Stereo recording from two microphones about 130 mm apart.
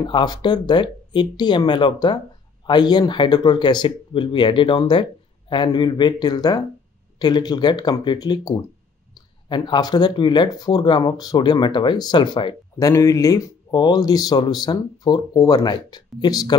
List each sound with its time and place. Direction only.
0.0 s speech: 35° left (ahead or behind)
12.7 s speech: 25° left (ahead or behind)